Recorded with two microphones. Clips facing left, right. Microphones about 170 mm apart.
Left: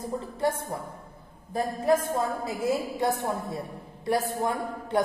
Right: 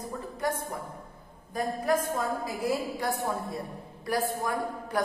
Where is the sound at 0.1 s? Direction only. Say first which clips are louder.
Left 6 dB; 25° left (ahead or behind).